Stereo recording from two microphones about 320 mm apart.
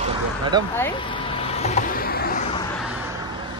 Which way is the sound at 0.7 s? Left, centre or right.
Centre.